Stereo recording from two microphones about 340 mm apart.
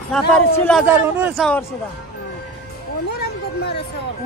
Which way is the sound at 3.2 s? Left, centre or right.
Left.